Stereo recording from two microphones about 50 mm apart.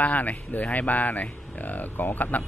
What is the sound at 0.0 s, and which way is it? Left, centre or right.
A man's voice, left.